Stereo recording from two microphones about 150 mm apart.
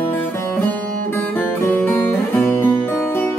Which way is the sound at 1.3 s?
10° left (ahead or behind).